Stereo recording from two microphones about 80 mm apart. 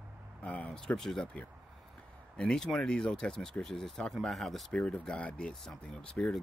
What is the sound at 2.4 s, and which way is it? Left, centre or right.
Speech, centre.